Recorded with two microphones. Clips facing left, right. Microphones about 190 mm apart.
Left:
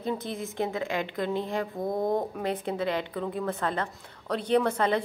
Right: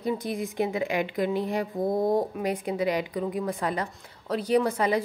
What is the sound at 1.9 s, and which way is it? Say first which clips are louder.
A woman's voice: right 3 dB; 5° right (ahead or behind).